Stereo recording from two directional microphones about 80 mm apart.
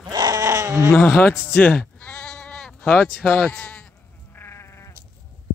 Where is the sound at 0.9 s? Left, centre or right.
Left; by 2.9 s centre.